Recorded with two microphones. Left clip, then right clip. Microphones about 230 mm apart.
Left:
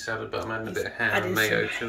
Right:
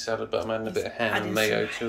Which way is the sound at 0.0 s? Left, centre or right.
Right.